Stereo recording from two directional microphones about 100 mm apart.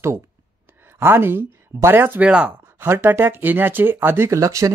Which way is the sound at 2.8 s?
20° right (ahead or behind).